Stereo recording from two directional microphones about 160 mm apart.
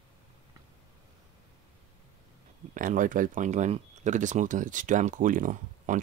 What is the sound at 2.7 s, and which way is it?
Speech, 55° right (ahead or behind).